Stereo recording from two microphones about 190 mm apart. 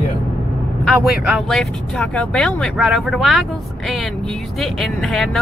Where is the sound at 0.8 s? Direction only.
Centre (ahead or behind).